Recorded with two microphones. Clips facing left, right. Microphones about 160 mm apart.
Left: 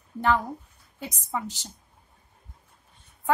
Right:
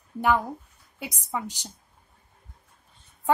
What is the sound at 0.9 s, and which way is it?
Speech, 10° right (ahead or behind).